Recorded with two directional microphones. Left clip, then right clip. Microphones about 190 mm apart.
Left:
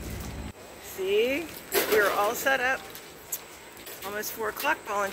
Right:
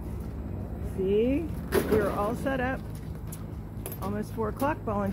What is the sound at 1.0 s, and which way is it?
Speech, 5° right (ahead or behind).